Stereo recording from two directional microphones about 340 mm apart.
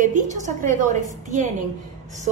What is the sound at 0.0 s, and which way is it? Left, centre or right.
Speech, right.